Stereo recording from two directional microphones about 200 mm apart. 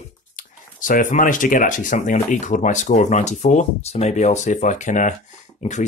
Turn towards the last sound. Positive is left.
turn(degrees=35)  # may be behind; listen again after turning